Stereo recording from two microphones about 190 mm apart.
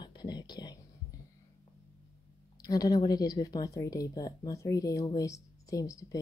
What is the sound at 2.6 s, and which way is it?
Speech, 20° left (ahead or behind).